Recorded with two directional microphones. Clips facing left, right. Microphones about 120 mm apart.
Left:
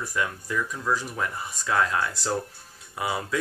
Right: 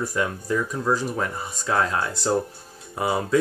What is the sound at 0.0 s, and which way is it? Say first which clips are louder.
Speech: right 4 dB; 30° right (ahead or behind).